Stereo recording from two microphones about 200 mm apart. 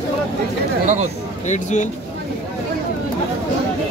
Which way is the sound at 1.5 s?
35° left (ahead or behind).